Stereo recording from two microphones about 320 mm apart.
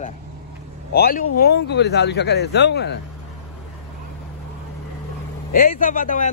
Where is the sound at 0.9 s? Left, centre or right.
Left.